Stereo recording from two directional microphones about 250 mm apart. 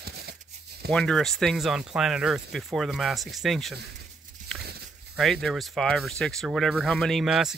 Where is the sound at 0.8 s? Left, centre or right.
Centre.